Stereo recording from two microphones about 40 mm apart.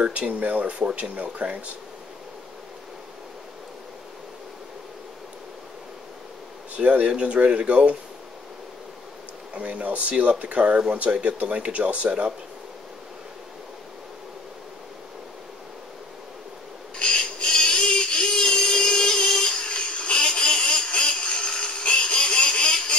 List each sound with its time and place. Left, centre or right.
0.0 s speech: right
6.8 s speech: right
9.5 s speech: right
17.0 s a sound: left